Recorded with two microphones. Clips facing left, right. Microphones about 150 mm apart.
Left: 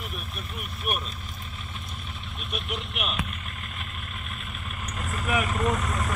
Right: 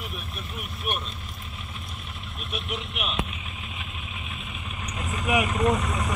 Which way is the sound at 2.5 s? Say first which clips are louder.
Even; centre (ahead or behind).